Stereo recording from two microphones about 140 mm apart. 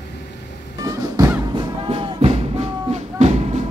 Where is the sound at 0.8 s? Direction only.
25° right (ahead or behind).